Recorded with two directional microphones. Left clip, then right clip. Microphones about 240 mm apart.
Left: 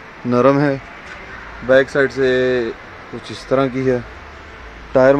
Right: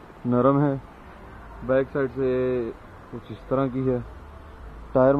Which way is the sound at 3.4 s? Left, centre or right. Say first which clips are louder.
Left 8 dB; centre.